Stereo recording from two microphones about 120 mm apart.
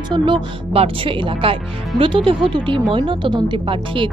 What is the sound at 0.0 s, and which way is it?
Speech, 40° right (ahead or behind).